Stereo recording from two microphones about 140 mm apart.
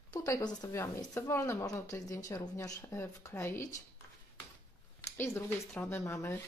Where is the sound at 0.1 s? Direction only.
25° left (ahead or behind).